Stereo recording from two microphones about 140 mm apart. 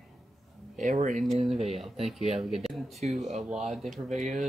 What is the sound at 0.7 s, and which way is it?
Speech, 65° right (ahead or behind).